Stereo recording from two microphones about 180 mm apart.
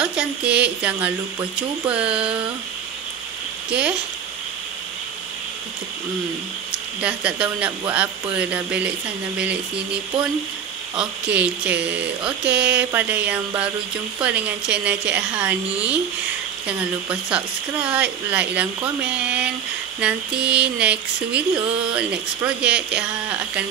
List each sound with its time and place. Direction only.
0.0 s a sound: 5° right (ahead or behind)
1.9 s mantra: 5° right (ahead or behind)
7.0 s mantra: 5° right (ahead or behind)
11.0 s mantra: 10° right (ahead or behind)
16.6 s mantra: 5° right (ahead or behind)